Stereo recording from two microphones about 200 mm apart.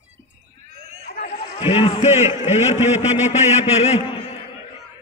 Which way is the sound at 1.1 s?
35° left (ahead or behind).